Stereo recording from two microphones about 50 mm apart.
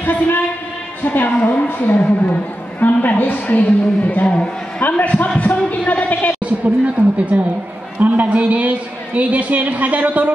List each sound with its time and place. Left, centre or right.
0.0 s a woman's voice: left
6.4 s a woman's voice: right